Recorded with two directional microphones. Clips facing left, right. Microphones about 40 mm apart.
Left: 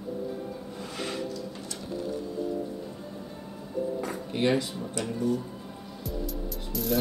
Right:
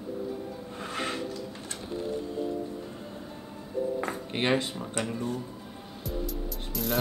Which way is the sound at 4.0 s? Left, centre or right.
Right.